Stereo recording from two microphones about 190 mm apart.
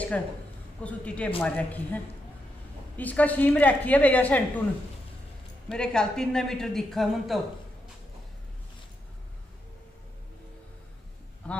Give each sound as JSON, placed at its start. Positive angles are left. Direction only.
{"t": 0.8, "sound": "a woman's voice", "side_deg": 5}
{"t": 3.0, "sound": "a woman's voice", "side_deg": 10}
{"t": 5.7, "sound": "a man's voice", "side_deg": 5}
{"t": 11.4, "sound": "a man's voice", "side_deg": 5}